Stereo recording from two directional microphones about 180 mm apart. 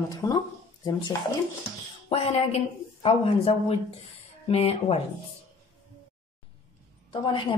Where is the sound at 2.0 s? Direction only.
35° left (ahead or behind).